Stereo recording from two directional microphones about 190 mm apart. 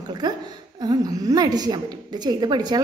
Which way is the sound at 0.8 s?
20° right (ahead or behind).